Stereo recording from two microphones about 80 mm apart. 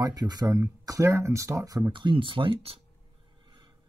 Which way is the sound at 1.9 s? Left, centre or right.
Right.